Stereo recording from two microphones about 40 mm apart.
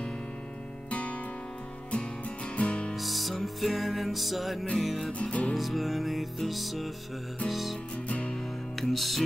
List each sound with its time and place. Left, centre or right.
0.8 s music: left
2.5 s music: left
3.0 s music: centre
5.2 s music: left
5.5 s music: centre
8.1 s music: left
8.8 s music: centre